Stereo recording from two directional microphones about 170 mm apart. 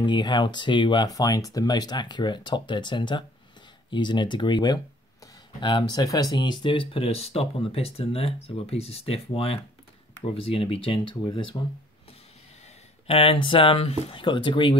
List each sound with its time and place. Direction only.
0.0 s speech: 25° left (ahead or behind)
5.2 s a sound: 25° left (ahead or behind)
6.1 s speech: 25° left (ahead or behind)
13.0 s speech: 35° left (ahead or behind)